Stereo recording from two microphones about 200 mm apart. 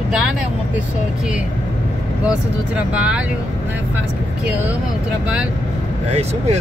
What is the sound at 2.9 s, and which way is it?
Speech, 5° right (ahead or behind).